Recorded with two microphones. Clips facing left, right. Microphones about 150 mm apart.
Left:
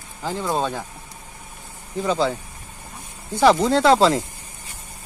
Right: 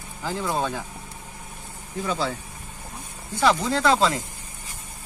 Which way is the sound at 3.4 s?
30° left (ahead or behind).